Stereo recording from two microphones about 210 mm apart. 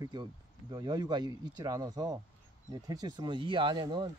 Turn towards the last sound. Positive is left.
turn(degrees=-20)  # may be behind; listen again after turning